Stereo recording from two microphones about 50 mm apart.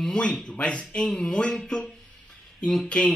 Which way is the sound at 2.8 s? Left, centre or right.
Centre.